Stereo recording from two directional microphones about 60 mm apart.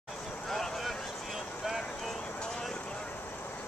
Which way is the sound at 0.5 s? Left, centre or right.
Centre.